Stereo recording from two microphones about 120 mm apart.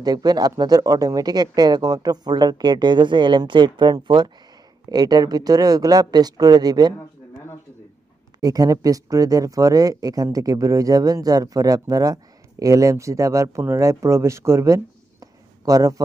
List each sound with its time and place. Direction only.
0.0 s speech: 35° right (ahead or behind)
8.4 s speech: 30° right (ahead or behind)